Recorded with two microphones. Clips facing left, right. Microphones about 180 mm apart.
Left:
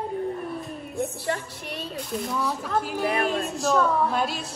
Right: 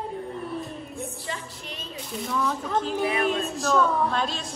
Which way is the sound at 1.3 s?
60° left (ahead or behind).